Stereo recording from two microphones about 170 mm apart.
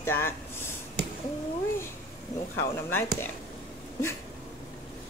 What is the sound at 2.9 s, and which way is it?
Speech, 15° left (ahead or behind).